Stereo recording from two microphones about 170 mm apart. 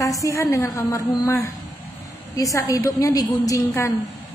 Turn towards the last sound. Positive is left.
turn(degrees=20)  # may be behind; listen again after turning